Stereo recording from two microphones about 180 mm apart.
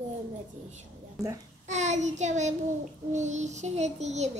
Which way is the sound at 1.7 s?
40° right (ahead or behind).